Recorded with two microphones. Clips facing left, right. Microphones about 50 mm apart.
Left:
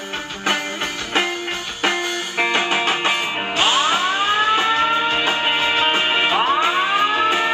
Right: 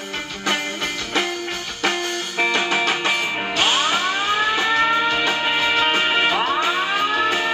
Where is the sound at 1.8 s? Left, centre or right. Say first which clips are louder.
Left 1 dB; left.